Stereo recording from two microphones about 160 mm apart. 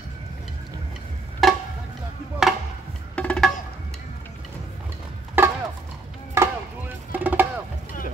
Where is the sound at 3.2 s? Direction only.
10° left (ahead or behind).